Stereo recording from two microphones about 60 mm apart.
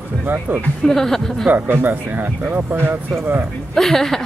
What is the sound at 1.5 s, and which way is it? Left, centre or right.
Speech, right.